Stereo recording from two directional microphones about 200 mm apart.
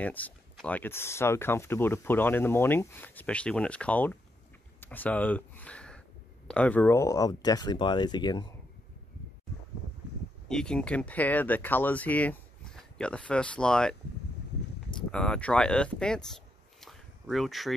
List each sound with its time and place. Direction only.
0.0 s speech: 10° left (ahead or behind)
10.5 s speech: 5° left (ahead or behind)
15.0 s speech: 5° left (ahead or behind)
16.8 s a sound: centre (ahead or behind)